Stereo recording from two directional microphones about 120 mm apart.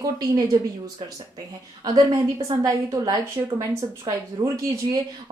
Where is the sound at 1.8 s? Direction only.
35° right (ahead or behind).